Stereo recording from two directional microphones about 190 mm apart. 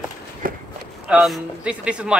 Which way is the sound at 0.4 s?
50° right (ahead or behind).